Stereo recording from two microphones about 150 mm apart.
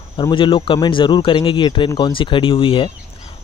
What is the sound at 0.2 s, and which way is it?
Speech, 30° left (ahead or behind).